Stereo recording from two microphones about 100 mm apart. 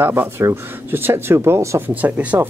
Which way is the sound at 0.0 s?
25° right (ahead or behind).